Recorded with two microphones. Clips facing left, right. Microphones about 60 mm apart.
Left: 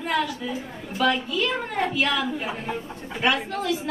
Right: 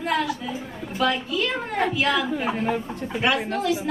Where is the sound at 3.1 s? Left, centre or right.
Centre.